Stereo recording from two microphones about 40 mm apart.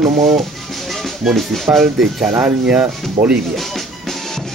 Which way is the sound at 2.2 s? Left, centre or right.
Right.